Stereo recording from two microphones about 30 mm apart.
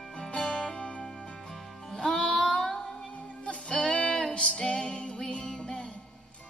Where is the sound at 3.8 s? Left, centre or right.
Left.